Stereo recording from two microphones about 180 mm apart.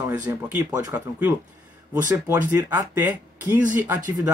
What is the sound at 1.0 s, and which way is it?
Speech, 10° right (ahead or behind).